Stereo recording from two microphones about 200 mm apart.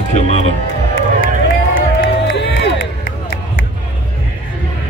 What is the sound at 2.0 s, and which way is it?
Crowd, 65° left (ahead or behind).